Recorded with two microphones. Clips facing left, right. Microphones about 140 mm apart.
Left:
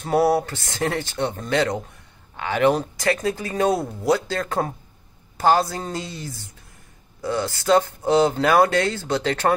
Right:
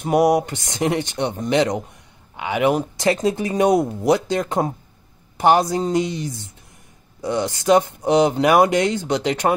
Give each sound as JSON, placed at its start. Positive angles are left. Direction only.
{"t": 0.0, "sound": "speech", "side_deg": -15}
{"t": 3.0, "sound": "speech", "side_deg": -20}